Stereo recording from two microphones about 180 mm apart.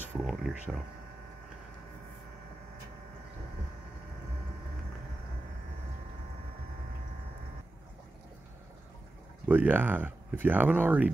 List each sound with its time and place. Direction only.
0.2 s speech: centre (ahead or behind)
9.5 s speech: 10° right (ahead or behind)